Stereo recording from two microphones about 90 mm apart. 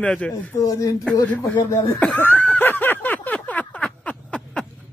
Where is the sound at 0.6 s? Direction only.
40° left (ahead or behind).